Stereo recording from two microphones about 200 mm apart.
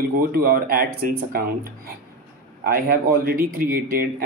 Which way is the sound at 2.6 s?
45° right (ahead or behind).